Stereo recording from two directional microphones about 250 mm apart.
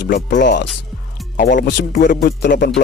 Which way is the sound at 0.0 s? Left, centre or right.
Left.